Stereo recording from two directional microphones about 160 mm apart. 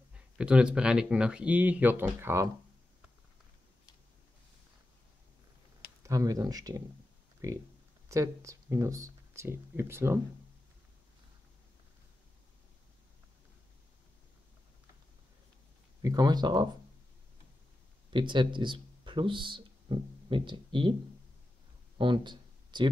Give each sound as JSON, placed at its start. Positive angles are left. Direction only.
{"t": 0.4, "sound": "speech", "side_deg": -5}
{"t": 6.0, "sound": "speech", "side_deg": -20}
{"t": 16.0, "sound": "speech", "side_deg": -25}
{"t": 18.1, "sound": "speech", "side_deg": -30}
{"t": 21.9, "sound": "a sound", "side_deg": -30}